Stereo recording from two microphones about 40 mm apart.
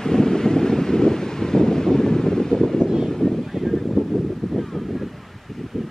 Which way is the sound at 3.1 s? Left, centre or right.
Centre.